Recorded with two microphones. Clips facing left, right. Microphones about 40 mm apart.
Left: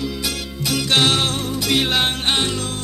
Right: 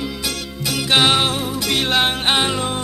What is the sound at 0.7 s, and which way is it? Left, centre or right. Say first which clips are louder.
Music: right 2 dB; centre.